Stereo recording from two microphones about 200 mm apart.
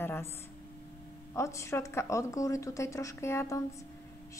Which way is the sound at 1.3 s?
15° left (ahead or behind).